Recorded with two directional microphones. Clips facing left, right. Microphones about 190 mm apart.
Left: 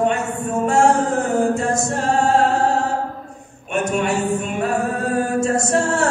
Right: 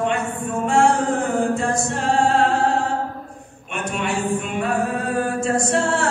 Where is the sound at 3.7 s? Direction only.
45° left (ahead or behind).